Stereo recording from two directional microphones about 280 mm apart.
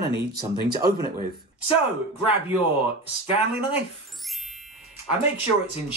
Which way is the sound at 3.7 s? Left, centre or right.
Centre.